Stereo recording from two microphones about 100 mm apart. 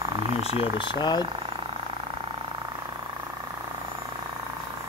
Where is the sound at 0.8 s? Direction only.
50° left (ahead or behind).